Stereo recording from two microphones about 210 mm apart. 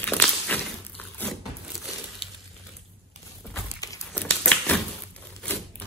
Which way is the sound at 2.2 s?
25° left (ahead or behind).